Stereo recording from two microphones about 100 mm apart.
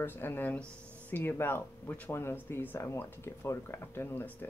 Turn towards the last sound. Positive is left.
turn(degrees=20)  # may be behind; listen again after turning